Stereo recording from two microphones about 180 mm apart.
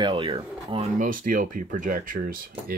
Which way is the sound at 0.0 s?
30° right (ahead or behind).